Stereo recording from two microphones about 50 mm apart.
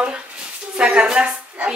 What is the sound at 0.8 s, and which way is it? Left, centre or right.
Speech, centre.